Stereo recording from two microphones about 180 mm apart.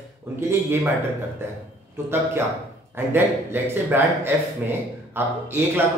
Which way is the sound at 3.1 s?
10° right (ahead or behind).